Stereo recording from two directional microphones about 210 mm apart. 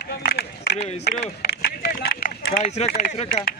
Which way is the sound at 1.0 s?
50° left (ahead or behind).